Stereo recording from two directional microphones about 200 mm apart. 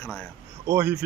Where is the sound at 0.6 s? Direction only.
10° right (ahead or behind).